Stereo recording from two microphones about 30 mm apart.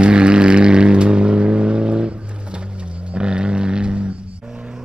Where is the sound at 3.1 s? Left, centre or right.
Right.